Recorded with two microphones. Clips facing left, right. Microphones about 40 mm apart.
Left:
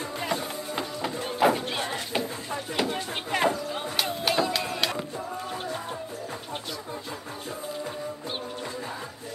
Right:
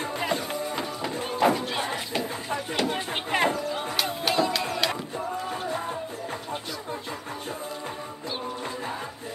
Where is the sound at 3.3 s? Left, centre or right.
Right.